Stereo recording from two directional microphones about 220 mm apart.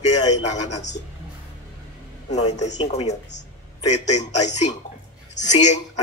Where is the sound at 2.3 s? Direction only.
30° left (ahead or behind).